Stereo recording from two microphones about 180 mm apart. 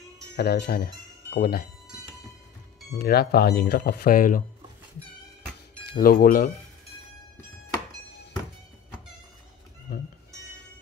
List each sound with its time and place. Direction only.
0.4 s speech: 60° left (ahead or behind)
3.0 s speech: 60° left (ahead or behind)
5.9 s speech: 55° left (ahead or behind)